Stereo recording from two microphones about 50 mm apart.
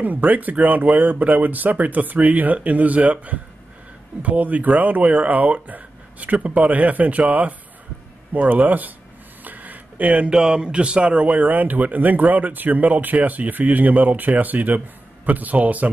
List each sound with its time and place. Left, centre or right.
0.0 s speech: right